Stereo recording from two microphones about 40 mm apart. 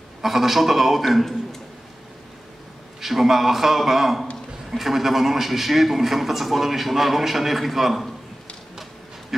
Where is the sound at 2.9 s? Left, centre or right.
Centre.